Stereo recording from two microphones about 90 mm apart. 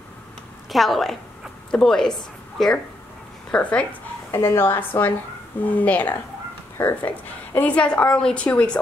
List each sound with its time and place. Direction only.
0.7 s a woman's voice: centre (ahead or behind)
4.3 s a woman's voice: 30° left (ahead or behind)
7.5 s a woman's voice: 15° left (ahead or behind)